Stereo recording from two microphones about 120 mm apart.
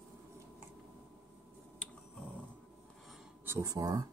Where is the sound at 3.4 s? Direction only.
25° right (ahead or behind).